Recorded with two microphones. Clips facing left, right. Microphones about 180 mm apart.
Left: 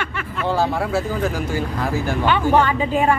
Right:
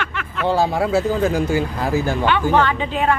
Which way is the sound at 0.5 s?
20° right (ahead or behind).